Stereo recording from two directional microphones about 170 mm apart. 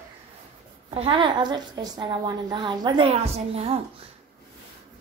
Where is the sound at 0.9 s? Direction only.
30° right (ahead or behind).